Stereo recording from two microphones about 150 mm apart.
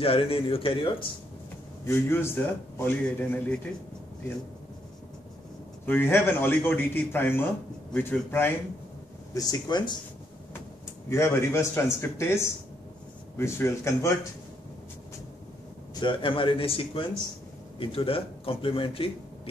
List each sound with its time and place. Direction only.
0.0 s a man's voice: 40° left (ahead or behind)
1.9 s a man's voice: 15° left (ahead or behind)
5.9 s a man's voice: 15° left (ahead or behind)
9.3 s speech: 25° left (ahead or behind)
11.1 s a man's voice: 20° left (ahead or behind)
15.9 s a man's voice: 30° left (ahead or behind)